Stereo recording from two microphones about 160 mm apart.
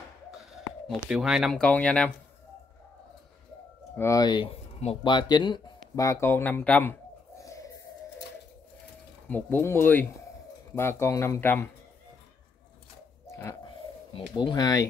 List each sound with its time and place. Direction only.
0.5 s speech: centre (ahead or behind)
3.9 s speech: 15° left (ahead or behind)
9.3 s speech: 15° left (ahead or behind)
13.3 s a sound: 15° left (ahead or behind)
14.3 s speech: 25° left (ahead or behind)